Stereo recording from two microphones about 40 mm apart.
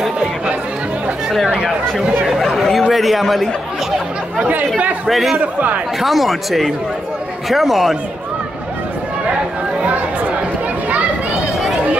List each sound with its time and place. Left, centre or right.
2.2 s chatter: centre
2.9 s a sound: centre
4.4 s speech: right
5.0 s speech: centre
5.4 s speech: right
5.9 s speech: centre